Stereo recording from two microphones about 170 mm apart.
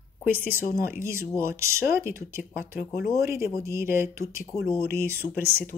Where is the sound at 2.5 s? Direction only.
50° left (ahead or behind).